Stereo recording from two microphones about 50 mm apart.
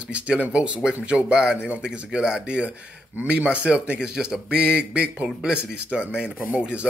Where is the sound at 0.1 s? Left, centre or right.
Right.